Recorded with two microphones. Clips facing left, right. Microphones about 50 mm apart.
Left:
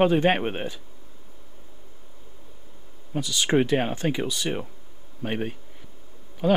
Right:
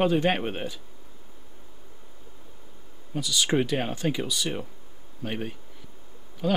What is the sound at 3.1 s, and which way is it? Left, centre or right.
Speech, left.